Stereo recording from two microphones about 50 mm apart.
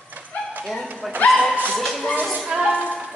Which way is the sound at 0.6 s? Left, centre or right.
Centre.